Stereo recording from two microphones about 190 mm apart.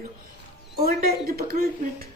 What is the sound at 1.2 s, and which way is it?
Speech, 50° right (ahead or behind).